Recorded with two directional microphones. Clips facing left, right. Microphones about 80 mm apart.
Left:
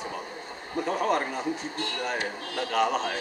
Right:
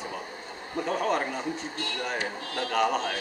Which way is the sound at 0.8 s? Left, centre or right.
Centre.